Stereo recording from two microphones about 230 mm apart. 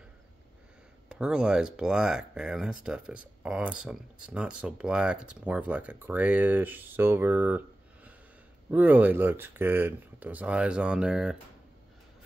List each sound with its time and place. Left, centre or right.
1.0 s speech: centre